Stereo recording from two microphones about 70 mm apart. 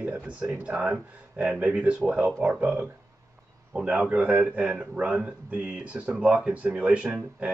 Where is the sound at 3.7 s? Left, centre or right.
Centre.